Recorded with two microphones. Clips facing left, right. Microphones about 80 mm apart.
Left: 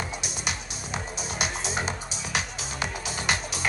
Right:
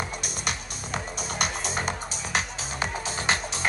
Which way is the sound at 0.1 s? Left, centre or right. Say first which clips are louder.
Right 1 dB; right.